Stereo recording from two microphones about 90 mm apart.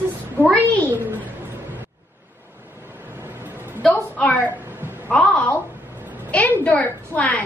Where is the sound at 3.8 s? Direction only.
15° left (ahead or behind).